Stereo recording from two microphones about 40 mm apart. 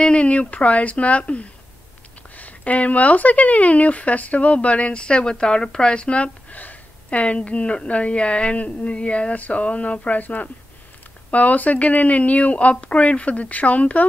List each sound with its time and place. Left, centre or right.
0.0 s speech: left
6.5 s speech: left